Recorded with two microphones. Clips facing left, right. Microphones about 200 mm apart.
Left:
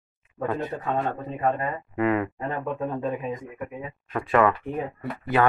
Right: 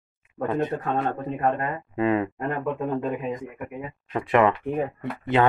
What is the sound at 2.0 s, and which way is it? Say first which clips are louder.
Speech: right 1 dB; 25° right (ahead or behind).